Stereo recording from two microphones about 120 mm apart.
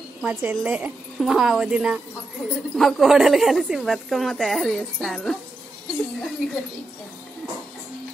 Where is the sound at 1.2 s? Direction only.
Centre (ahead or behind).